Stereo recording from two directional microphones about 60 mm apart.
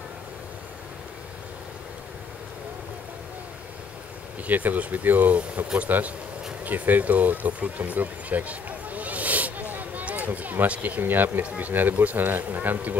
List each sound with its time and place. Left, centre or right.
4.5 s speech: right